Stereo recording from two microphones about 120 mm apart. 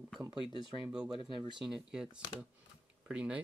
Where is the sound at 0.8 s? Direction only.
5° right (ahead or behind).